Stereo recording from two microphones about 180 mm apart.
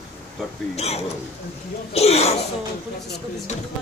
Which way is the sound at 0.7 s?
35° left (ahead or behind).